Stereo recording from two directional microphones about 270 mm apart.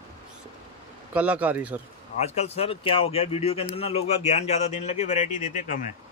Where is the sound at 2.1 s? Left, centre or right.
Left.